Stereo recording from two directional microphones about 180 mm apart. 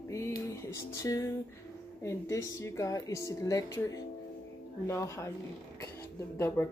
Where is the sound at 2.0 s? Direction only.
15° left (ahead or behind).